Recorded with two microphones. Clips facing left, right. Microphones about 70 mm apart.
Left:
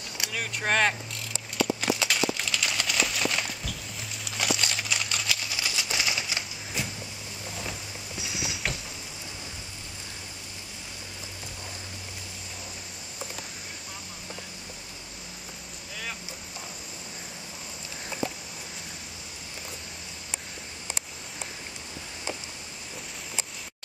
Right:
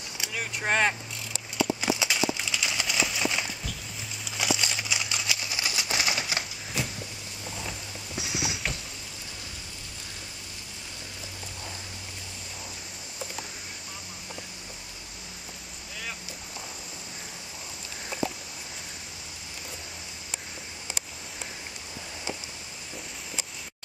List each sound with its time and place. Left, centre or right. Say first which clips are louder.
0.3 s vehicle: even; centre
4.2 s typewriter: even; centre; by 6.4 s right
8.2 s a sound: right 3 dB; centre